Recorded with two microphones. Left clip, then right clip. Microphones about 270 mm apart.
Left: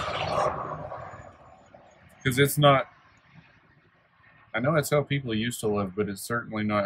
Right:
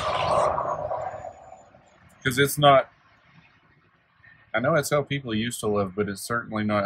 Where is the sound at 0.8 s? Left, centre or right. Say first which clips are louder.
Right 9 dB; centre.